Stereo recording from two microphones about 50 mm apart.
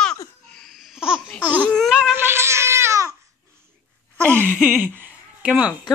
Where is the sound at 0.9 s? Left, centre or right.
Centre.